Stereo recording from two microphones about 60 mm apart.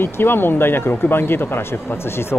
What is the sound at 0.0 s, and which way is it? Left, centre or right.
Speech, left.